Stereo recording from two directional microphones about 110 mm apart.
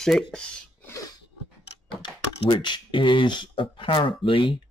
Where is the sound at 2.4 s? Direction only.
45° left (ahead or behind).